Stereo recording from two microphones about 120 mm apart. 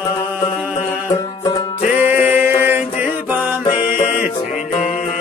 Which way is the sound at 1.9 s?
15° right (ahead or behind).